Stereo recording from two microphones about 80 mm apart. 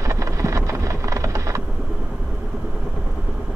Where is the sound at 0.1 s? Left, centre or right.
Right.